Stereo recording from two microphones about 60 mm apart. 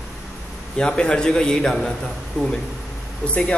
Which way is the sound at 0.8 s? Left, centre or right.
Centre.